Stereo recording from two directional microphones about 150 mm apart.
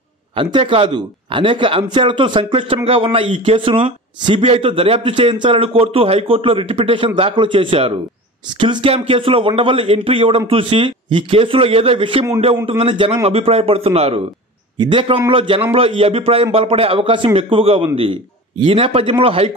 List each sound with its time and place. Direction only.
0.4 s a man's voice: 35° right (ahead or behind)